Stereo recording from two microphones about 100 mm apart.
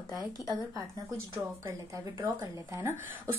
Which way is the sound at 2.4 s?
20° right (ahead or behind).